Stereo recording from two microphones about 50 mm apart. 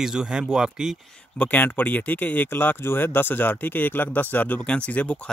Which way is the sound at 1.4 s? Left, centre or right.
Left.